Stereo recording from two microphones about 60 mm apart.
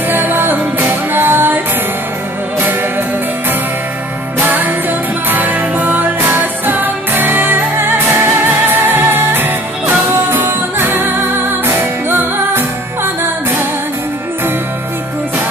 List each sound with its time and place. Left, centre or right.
0.1 s music: right
4.4 s music: right